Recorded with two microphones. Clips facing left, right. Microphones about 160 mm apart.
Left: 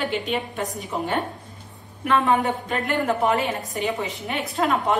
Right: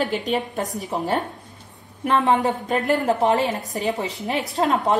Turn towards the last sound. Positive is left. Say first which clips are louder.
# right 2 dB
turn(degrees=-40)  # may be behind; listen again after turning